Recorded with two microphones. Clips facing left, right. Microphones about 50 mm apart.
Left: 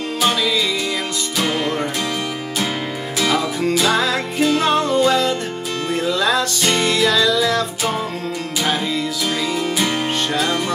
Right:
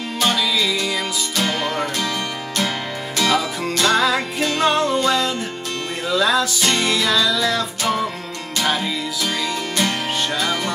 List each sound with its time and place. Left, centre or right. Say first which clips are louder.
0.2 s music: left 1 dB; centre
3.2 s music: even; centre
9.2 s music: left 1 dB; centre